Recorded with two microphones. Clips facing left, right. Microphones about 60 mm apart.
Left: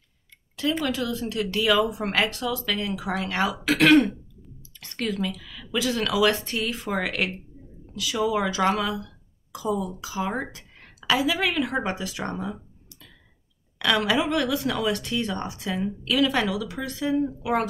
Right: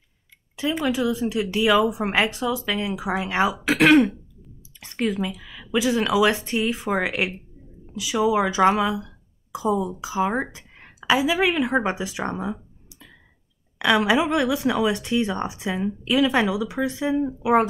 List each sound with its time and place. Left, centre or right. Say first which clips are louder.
0.6 s speech: right 2 dB; centre
13.7 s speech: right 4 dB; centre